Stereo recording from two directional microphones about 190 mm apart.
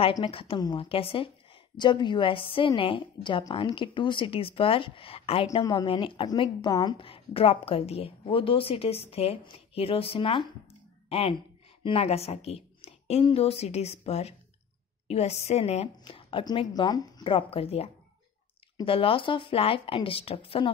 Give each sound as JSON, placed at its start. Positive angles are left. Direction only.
{"t": 0.2, "sound": "a woman's voice", "side_deg": 30}